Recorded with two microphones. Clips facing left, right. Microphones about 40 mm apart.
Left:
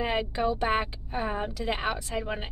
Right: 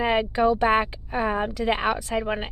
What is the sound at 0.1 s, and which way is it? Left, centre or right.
A woman's voice, centre.